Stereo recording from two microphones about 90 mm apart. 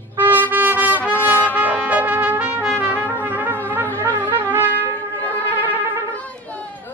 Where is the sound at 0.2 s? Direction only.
20° right (ahead or behind).